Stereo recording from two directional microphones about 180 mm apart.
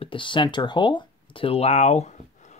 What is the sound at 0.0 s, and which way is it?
Speech, 30° left (ahead or behind).